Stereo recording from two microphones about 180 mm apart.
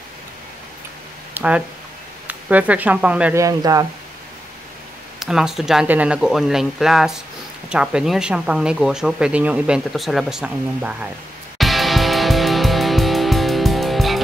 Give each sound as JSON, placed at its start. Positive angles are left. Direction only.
{"t": 1.3, "sound": "a sound", "side_deg": -5}
{"t": 2.2, "sound": "speech", "side_deg": -10}
{"t": 3.4, "sound": "speech", "side_deg": -20}
{"t": 5.2, "sound": "speech", "side_deg": -5}
{"t": 11.5, "sound": "music", "side_deg": 0}